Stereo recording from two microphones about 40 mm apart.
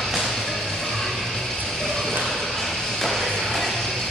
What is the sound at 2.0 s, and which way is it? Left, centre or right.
Music, centre.